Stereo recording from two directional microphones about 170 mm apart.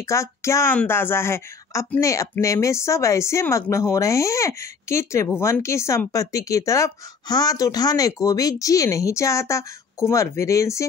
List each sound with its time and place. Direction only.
0.0 s speech: 15° left (ahead or behind)